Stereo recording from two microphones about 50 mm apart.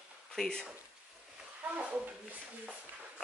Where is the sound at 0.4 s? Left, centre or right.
Centre.